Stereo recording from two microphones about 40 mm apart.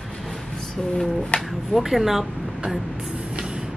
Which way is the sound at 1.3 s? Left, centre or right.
Left.